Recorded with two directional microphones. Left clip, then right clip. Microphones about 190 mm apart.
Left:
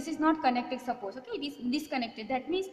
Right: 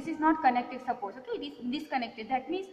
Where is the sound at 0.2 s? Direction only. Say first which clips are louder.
Right 2 dB; 65° left (ahead or behind).